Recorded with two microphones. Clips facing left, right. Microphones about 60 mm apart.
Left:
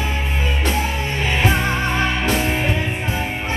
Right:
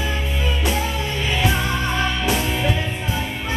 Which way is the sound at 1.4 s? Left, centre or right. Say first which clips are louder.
Left 3 dB; left.